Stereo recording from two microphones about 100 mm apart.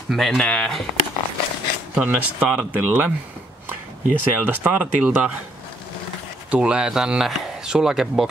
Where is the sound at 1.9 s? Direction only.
15° right (ahead or behind).